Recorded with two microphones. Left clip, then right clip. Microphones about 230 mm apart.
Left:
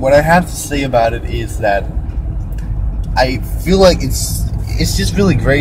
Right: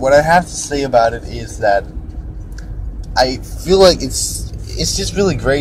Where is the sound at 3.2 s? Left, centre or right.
Centre.